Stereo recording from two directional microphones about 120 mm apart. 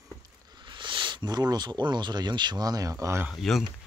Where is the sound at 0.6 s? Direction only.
40° right (ahead or behind); by 3.2 s 25° right (ahead or behind).